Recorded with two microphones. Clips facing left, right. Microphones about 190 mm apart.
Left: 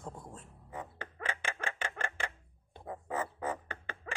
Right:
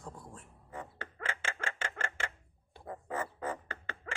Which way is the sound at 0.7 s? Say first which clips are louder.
Left 1 dB; 15° left (ahead or behind).